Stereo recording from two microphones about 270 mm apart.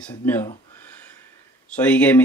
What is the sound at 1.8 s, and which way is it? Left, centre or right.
Speech, centre.